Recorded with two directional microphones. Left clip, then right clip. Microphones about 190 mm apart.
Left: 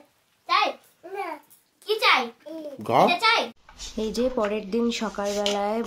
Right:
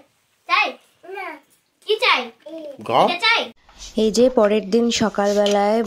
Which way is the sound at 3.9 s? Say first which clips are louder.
Right 10 dB; 35° right (ahead or behind).